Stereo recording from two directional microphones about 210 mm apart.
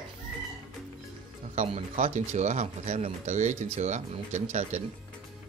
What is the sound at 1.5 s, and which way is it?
Speech, 30° right (ahead or behind).